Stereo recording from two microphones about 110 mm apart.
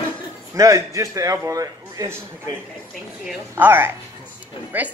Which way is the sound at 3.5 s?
20° right (ahead or behind).